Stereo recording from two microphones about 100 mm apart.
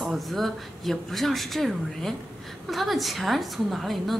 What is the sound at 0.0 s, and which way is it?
Speech, centre (ahead or behind).